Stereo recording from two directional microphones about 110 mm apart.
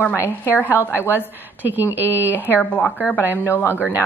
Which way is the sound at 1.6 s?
15° right (ahead or behind).